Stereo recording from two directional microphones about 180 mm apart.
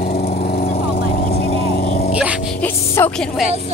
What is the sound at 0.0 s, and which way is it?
Lawn mower, 55° left (ahead or behind).